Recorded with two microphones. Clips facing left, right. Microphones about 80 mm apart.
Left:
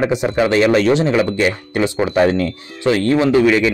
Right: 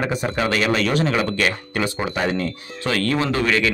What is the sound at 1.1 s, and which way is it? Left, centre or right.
Speech, centre.